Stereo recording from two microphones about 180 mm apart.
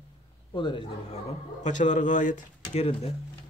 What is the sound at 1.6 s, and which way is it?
Speech, 45° left (ahead or behind).